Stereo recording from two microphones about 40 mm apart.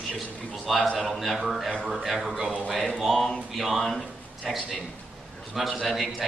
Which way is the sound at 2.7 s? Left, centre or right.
Centre.